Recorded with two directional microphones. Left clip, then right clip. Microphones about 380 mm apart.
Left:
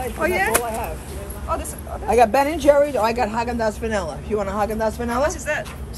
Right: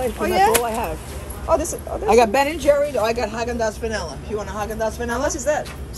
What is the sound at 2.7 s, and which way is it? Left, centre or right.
Speech, centre.